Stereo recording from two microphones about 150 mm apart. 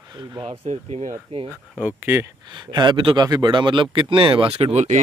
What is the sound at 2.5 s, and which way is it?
Speech, 30° right (ahead or behind).